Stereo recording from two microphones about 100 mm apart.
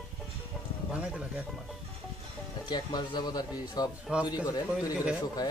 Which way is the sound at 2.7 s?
45° left (ahead or behind).